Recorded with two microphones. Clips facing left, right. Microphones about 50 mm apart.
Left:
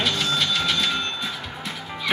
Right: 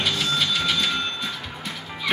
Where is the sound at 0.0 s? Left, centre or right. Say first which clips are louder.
Left 1 dB; centre.